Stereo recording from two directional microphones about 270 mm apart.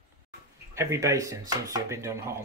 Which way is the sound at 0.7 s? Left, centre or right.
Centre.